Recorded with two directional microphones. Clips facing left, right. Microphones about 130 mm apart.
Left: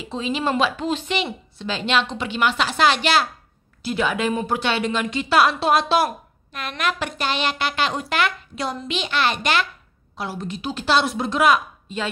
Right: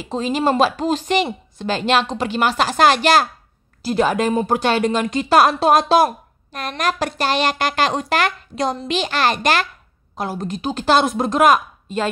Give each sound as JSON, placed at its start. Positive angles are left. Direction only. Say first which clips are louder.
{"t": 0.0, "sound": "a woman's voice", "louder": "right 5 dB", "side_deg": -45}